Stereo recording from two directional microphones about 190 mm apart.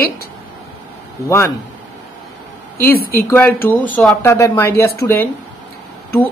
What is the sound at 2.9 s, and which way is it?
Speech, 50° left (ahead or behind).